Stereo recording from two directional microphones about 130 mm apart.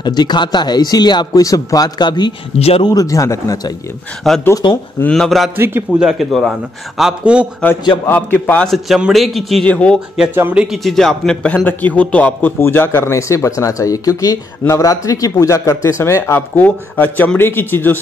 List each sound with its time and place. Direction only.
0.0 s a man's voice: 35° left (ahead or behind)
4.2 s a man's voice: centre (ahead or behind)
4.6 s speech: 40° left (ahead or behind)
5.0 s a man's voice: 5° left (ahead or behind)
5.6 s a man's voice: 15° right (ahead or behind)
5.9 s a man's voice: 5° right (ahead or behind)
8.1 s a man's voice: 15° left (ahead or behind)
8.6 s a man's voice: centre (ahead or behind)
10.3 s a man's voice: 10° right (ahead or behind); by 17.9 s 15° left (ahead or behind)